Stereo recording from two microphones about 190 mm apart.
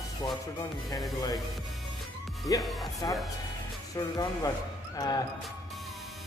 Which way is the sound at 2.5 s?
20° left (ahead or behind).